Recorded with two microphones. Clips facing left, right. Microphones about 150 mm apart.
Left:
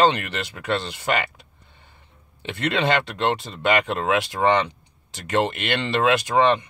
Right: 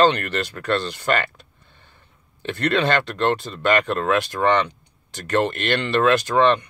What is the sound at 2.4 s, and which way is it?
Speech, 20° left (ahead or behind).